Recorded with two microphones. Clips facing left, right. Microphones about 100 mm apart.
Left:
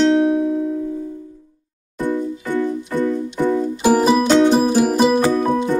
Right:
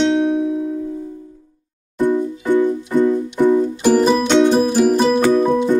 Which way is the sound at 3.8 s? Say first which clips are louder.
Left 3 dB; 10° left (ahead or behind).